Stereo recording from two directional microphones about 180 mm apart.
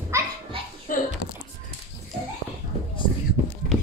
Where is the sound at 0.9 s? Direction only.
50° left (ahead or behind).